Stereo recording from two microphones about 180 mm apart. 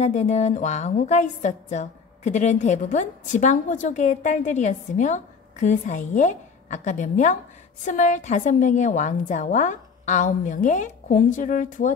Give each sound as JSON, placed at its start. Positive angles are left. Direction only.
{"t": 0.0, "sound": "a woman's voice", "side_deg": 40}